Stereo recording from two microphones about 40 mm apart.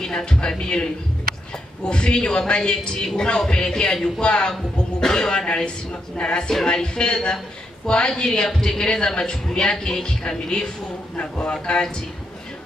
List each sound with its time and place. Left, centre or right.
0.1 s speech: left
1.9 s a woman's voice: left
11.1 s speech: left
11.5 s speech: left